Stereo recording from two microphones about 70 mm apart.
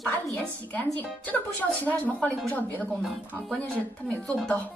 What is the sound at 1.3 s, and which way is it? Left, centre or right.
A woman's voice, left.